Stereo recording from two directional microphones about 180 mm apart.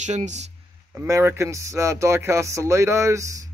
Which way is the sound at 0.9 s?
15° right (ahead or behind).